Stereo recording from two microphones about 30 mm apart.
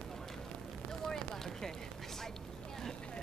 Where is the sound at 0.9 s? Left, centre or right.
Centre.